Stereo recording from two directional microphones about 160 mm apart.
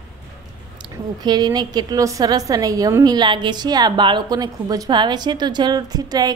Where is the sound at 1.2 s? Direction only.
25° right (ahead or behind).